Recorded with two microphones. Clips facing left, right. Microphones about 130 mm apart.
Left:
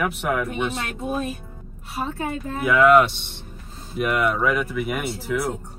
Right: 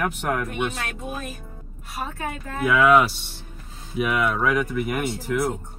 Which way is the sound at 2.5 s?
Centre (ahead or behind).